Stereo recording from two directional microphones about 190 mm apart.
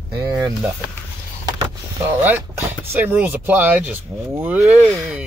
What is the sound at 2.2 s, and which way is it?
Speech, 10° right (ahead or behind).